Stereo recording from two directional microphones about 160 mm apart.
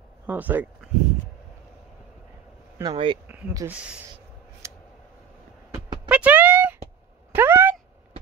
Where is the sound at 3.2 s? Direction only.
10° right (ahead or behind).